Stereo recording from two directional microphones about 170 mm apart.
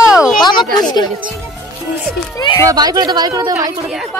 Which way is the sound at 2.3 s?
30° left (ahead or behind).